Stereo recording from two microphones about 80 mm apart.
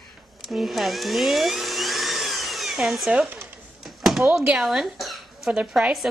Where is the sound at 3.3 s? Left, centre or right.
Right.